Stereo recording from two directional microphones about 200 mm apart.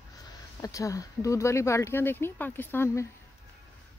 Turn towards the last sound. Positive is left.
turn(degrees=10)  # may be behind; listen again after turning